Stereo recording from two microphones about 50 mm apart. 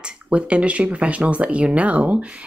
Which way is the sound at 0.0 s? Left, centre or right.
Right.